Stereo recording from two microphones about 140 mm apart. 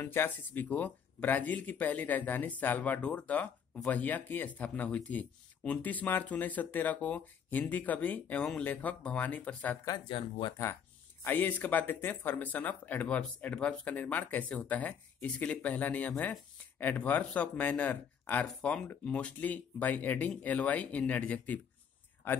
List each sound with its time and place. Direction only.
0.0 s speech: 15° left (ahead or behind)
9.8 s speech: 35° left (ahead or behind)
11.2 s speech: 10° left (ahead or behind)